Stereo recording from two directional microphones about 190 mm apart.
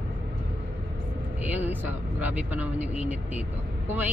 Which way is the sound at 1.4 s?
10° right (ahead or behind).